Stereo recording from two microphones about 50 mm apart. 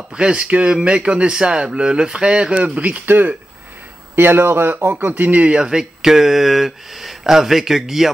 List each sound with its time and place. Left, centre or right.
0.1 s speech: right
1.3 s speech: centre
2.6 s speech: right
4.1 s speech: right
5.1 s speech: right
5.5 s speech: centre